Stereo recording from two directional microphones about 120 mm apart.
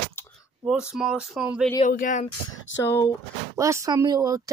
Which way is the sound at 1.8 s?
85° left.